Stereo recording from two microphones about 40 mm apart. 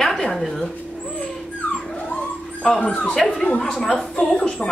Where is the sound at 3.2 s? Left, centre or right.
Centre.